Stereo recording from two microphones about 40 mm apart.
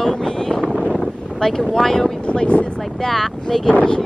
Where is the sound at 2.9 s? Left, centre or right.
Centre.